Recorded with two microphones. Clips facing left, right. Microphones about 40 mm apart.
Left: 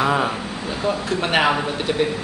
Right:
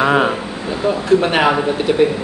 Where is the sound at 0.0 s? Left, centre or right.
Right.